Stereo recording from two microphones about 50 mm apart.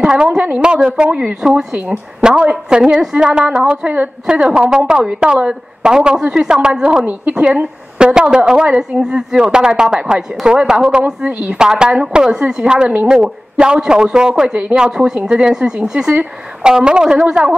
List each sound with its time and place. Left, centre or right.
0.0 s a woman's voice: centre
7.1 s a woman's voice: right
7.4 s a woman's voice: centre
11.2 s a woman's voice: right
11.5 s a woman's voice: centre